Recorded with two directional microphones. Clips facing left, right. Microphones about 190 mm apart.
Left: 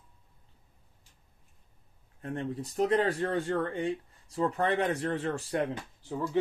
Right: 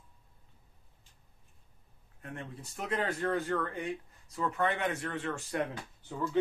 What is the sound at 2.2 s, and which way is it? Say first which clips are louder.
Speech: left 9 dB; 35° left (ahead or behind).